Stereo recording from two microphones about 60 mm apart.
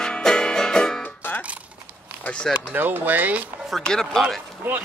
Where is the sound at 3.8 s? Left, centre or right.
Centre.